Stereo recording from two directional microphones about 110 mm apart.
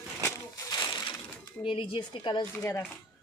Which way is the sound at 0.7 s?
40° left (ahead or behind).